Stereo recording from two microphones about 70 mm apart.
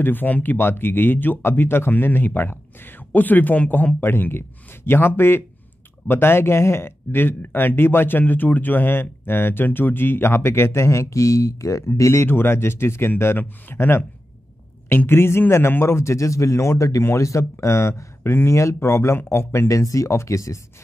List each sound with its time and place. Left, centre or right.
0.0 s speech: left
11.9 s speech: left
19.8 s speech: left